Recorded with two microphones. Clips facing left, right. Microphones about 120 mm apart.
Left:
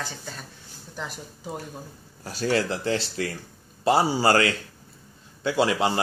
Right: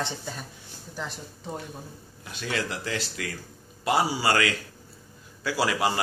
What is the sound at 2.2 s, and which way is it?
A man's voice, 35° left (ahead or behind).